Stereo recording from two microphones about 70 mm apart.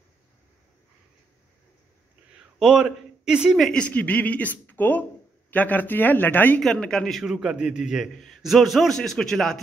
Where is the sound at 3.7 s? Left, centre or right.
Centre.